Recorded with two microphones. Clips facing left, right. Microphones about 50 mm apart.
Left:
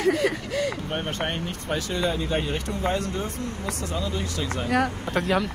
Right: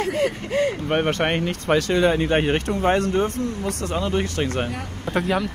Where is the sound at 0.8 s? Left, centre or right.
Right.